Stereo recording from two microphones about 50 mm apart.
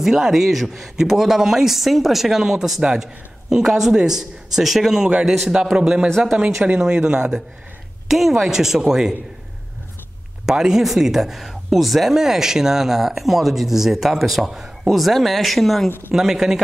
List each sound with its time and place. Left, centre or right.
0.0 s speech: centre
6.0 s speech: centre
6.3 s speech: right
8.1 s speech: centre
10.4 s speech: centre
16.1 s speech: centre